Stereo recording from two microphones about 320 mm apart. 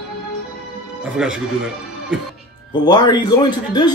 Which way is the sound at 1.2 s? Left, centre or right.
Centre.